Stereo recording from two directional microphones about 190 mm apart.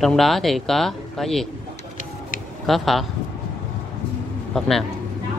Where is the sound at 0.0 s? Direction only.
Centre (ahead or behind).